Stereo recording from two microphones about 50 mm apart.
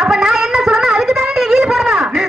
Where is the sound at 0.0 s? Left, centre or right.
Centre.